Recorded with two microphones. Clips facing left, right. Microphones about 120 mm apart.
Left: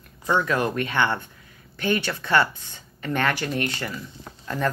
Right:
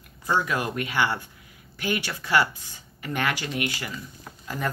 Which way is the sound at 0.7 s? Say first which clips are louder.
Left 2 dB; 10° right (ahead or behind).